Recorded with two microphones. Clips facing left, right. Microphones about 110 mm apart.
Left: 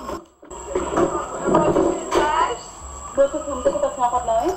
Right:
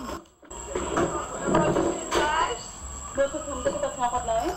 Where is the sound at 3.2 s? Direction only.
35° left (ahead or behind).